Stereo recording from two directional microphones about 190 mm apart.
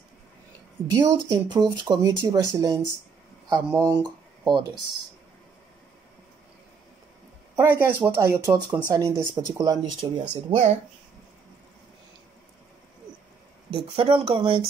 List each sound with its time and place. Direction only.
0.9 s speech: 20° right (ahead or behind)
7.5 s speech: 10° right (ahead or behind)
10.5 s speech: 35° right (ahead or behind)
13.7 s speech: 30° right (ahead or behind)